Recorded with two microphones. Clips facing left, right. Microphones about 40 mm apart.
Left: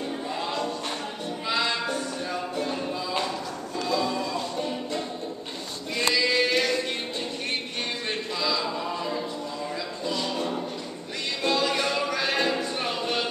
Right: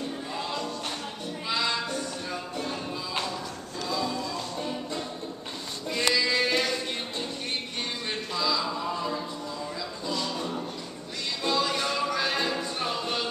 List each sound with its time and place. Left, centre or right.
1.5 s music: centre
3.8 s music: centre
5.9 s music: centre
8.1 s a sound: centre
10.0 s music: centre